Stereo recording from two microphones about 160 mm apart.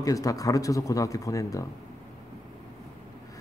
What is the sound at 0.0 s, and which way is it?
A man's voice, 20° left (ahead or behind).